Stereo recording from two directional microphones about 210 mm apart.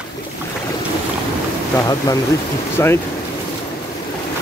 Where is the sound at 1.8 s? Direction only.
15° left (ahead or behind).